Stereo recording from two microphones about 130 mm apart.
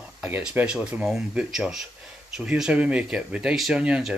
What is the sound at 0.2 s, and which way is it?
Speech, 10° right (ahead or behind).